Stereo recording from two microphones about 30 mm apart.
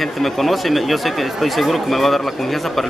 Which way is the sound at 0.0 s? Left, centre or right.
Centre.